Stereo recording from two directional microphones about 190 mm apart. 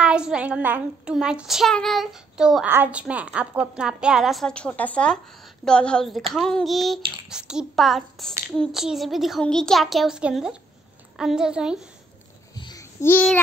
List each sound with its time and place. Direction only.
0.0 s a child's voice: 5° right (ahead or behind)
12.5 s babbling: 25° left (ahead or behind)
13.0 s a child's voice: 10° left (ahead or behind)